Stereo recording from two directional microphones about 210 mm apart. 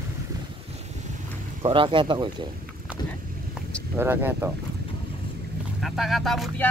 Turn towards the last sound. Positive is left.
turn(degrees=0)  # may be behind; listen again after turning